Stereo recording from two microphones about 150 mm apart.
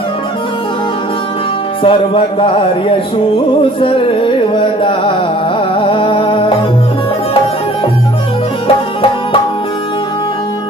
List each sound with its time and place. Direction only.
1.8 s music: 35° left (ahead or behind)
3.8 s music: 35° left (ahead or behind)
8.6 s music: 35° left (ahead or behind)